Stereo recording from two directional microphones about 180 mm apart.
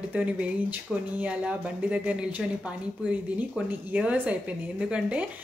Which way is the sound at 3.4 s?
10° right (ahead or behind).